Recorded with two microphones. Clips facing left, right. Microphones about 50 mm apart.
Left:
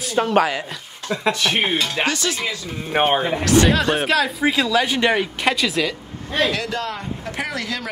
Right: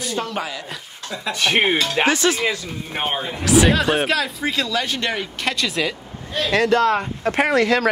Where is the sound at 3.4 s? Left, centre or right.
Centre.